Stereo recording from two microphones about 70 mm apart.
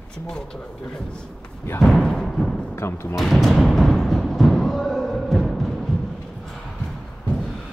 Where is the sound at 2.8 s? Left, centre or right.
Left.